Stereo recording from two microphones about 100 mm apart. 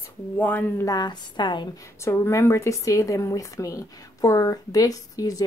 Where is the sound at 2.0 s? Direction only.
25° left (ahead or behind).